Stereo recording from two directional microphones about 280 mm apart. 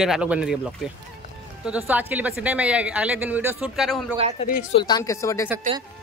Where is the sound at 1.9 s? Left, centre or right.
Centre.